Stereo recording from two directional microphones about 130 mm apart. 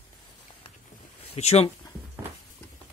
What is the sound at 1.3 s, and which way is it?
Speech, 55° left (ahead or behind).